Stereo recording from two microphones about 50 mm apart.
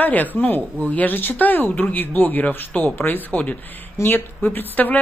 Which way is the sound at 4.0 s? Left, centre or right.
Left.